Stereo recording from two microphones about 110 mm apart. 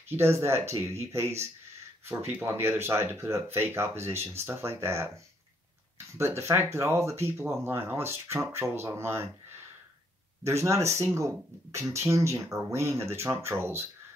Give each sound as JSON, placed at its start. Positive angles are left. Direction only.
{"t": 0.1, "sound": "speech", "side_deg": -20}
{"t": 10.4, "sound": "speech", "side_deg": -25}